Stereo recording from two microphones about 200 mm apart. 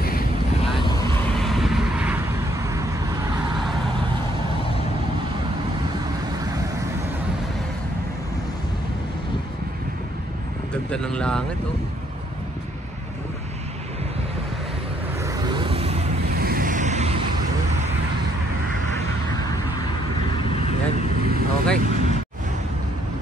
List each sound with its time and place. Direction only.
1.3 s vehicle: centre (ahead or behind); by 2.9 s 15° right (ahead or behind)
10.9 s speech: 5° left (ahead or behind)
15.2 s vehicle: 25° right (ahead or behind)
16.3 s vehicle: 45° right (ahead or behind)
21.3 s vehicle: 45° right (ahead or behind)